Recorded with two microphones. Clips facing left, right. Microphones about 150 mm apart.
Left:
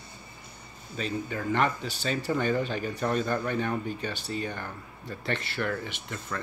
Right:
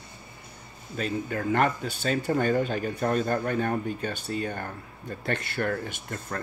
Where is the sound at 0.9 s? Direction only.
50° right (ahead or behind).